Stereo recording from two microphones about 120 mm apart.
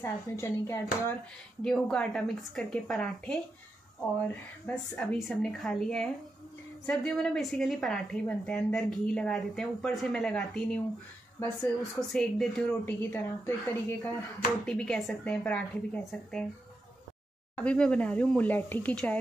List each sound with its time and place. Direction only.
0.0 s a woman's voice: 25° left (ahead or behind)
1.6 s a woman's voice: 5° left (ahead or behind)
4.2 s speech: 15° left (ahead or behind)
5.1 s a woman's voice: centre (ahead or behind)
11.3 s a woman's voice: 20° left (ahead or behind)
12.1 s a woman's voice: 5° left (ahead or behind)
12.8 s a woman's voice: 20° left (ahead or behind)
14.7 s a woman's voice: 5° left (ahead or behind)
17.6 s speech: 10° left (ahead or behind)